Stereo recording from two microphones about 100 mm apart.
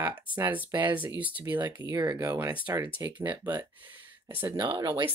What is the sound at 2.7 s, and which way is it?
Speech, 30° right (ahead or behind).